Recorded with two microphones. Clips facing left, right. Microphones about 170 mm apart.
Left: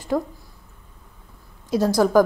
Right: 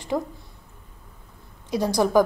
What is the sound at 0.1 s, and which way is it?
Speech, 15° right (ahead or behind).